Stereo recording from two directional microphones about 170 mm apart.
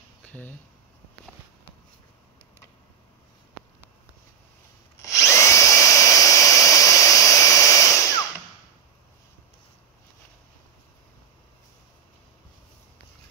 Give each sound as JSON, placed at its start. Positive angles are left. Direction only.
{"t": 0.3, "sound": "speech", "side_deg": 10}
{"t": 5.0, "sound": "drill", "side_deg": 20}